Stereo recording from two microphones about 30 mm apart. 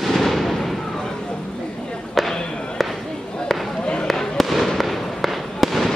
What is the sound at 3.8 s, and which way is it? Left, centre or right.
Basketball bounce, left.